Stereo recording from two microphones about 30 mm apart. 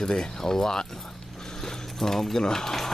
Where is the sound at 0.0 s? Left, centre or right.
Left.